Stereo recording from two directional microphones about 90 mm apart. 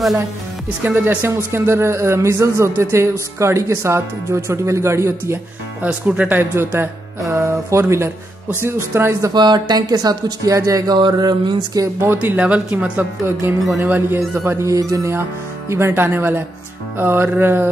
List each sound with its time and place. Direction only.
0.8 s a man's voice: 20° right (ahead or behind)
5.8 s speech: 15° right (ahead or behind)
9.3 s speech: 55° right (ahead or behind)
11.0 s speech: 55° right (ahead or behind)
12.0 s speech: 25° right (ahead or behind)
12.4 s speech: 15° right (ahead or behind)
13.2 s speech: 25° right (ahead or behind)